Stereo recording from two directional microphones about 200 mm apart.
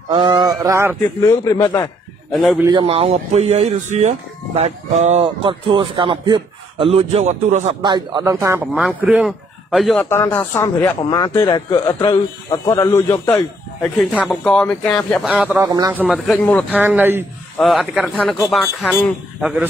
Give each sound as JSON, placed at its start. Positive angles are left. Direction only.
{"t": 0.1, "sound": "speech", "side_deg": -20}
{"t": 1.2, "sound": "a man's voice", "side_deg": 15}
{"t": 2.3, "sound": "speech", "side_deg": 0}
{"t": 2.6, "sound": "speech", "side_deg": -25}
{"t": 7.8, "sound": "speech", "side_deg": -20}
{"t": 10.0, "sound": "a man's voice", "side_deg": 10}
{"t": 17.6, "sound": "speech", "side_deg": 0}